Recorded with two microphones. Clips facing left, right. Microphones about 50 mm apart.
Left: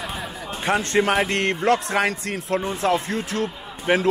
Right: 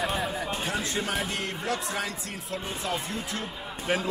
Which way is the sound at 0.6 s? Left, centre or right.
Left.